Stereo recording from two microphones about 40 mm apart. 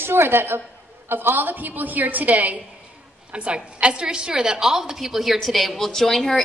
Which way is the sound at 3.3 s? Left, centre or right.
Right.